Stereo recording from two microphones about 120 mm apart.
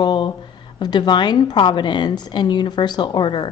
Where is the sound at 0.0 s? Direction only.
40° left (ahead or behind).